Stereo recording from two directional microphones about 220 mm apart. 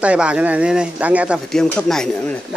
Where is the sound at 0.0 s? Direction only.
5° right (ahead or behind).